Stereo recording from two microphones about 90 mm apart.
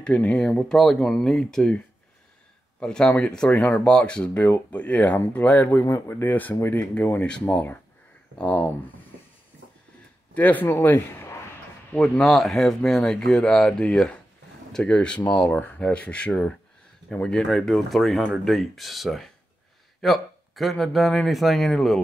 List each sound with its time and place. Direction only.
0.0 s speech: 15° left (ahead or behind)
2.8 s speech: 10° left (ahead or behind)
10.3 s a man's voice: 20° left (ahead or behind)
11.9 s speech: 5° left (ahead or behind)